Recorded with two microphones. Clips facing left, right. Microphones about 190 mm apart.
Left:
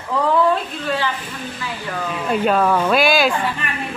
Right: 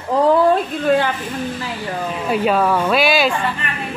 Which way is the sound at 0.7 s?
50° right (ahead or behind).